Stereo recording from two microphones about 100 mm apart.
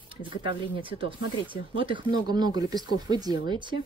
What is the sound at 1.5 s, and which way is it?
Speech, 60° right (ahead or behind).